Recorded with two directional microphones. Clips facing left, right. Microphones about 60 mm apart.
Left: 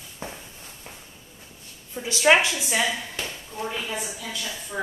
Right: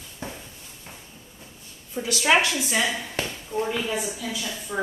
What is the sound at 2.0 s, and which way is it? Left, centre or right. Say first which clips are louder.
Speech: left 2 dB; left.